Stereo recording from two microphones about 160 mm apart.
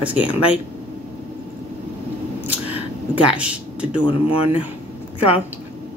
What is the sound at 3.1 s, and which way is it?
Speech, 10° right (ahead or behind).